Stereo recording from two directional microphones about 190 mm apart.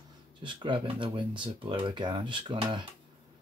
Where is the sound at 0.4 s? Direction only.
25° right (ahead or behind).